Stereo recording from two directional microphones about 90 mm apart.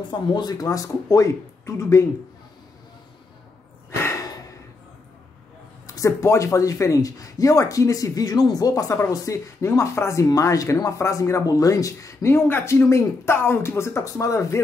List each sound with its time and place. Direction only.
0.1 s speech: 55° left (ahead or behind); by 2.0 s 35° left (ahead or behind)
4.0 s a sound: 30° left (ahead or behind)
5.9 s speech: 35° left (ahead or behind)